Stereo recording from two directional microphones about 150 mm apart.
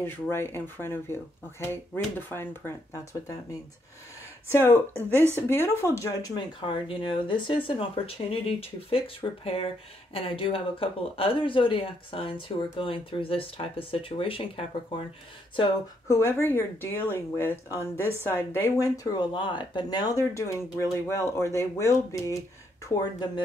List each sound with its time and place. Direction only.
0.0 s speech: 15° left (ahead or behind)
4.5 s speech: 15° left (ahead or behind); by 15.1 s 35° left (ahead or behind)
16.1 s speech: 15° left (ahead or behind)
19.0 s speech: 30° left (ahead or behind)